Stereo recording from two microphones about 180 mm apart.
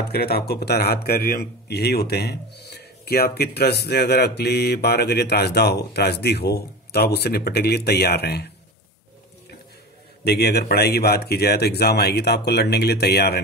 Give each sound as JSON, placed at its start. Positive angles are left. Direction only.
{"t": 0.1, "sound": "speech", "side_deg": 60}
{"t": 10.2, "sound": "speech", "side_deg": 65}